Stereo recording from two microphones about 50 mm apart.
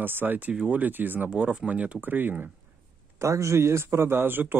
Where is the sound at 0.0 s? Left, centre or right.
Right.